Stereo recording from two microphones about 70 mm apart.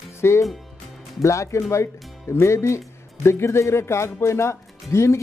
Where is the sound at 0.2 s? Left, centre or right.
Left.